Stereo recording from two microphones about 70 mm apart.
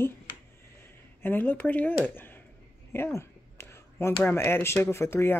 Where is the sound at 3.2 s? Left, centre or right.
Left.